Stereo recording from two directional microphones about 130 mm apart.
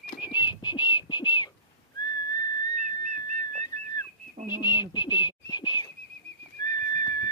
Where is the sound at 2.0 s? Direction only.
30° left (ahead or behind).